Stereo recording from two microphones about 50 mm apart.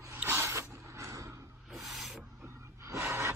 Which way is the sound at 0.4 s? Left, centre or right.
Right.